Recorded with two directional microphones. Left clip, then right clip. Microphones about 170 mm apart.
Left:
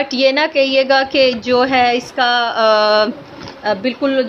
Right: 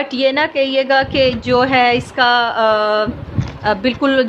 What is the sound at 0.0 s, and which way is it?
A woman's voice, 5° left (ahead or behind).